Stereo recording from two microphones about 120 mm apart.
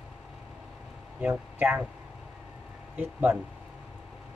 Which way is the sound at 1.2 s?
15° right (ahead or behind).